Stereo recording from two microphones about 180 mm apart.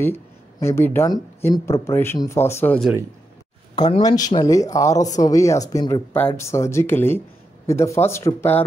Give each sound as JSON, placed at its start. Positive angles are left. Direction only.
{"t": 0.0, "sound": "speech", "side_deg": 15}
{"t": 3.7, "sound": "speech", "side_deg": 25}